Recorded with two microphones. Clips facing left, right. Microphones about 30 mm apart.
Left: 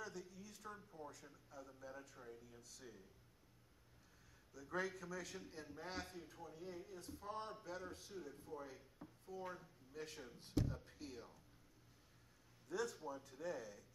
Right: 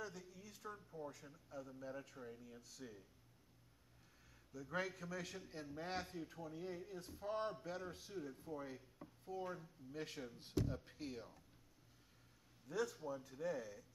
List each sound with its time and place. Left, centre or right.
0.0 s a sound: centre
0.8 s a man's voice: centre
4.6 s speech: centre
5.8 s speech: centre
6.0 s a man's voice: centre
6.5 s speech: centre
8.7 s chopping: centre
9.4 s a man's voice: centre
9.9 s speech: centre
12.6 s a man's voice: centre